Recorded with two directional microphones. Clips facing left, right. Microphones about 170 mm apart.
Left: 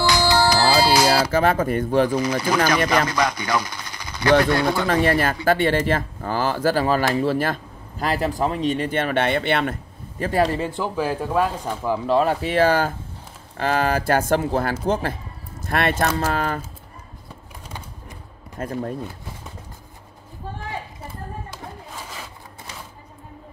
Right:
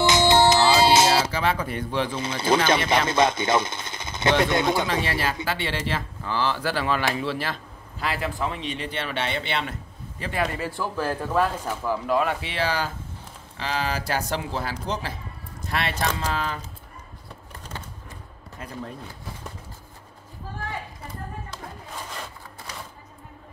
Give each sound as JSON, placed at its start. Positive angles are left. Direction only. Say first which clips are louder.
{"t": 0.0, "sound": "music", "louder": "right 1 dB", "side_deg": -20}
{"t": 1.3, "sound": "speech", "louder": "left 7 dB", "side_deg": 45}
{"t": 2.0, "sound": "mechanisms", "louder": "left 3 dB", "side_deg": -25}
{"t": 2.9, "sound": "speech", "louder": "even", "side_deg": -25}
{"t": 5.0, "sound": "speech", "louder": "left 8 dB", "side_deg": 50}
{"t": 12.1, "sound": "speech", "louder": "left 6 dB", "side_deg": 35}
{"t": 18.6, "sound": "speech", "louder": "left 9 dB", "side_deg": 50}